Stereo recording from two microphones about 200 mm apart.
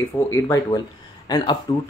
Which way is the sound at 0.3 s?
15° left (ahead or behind).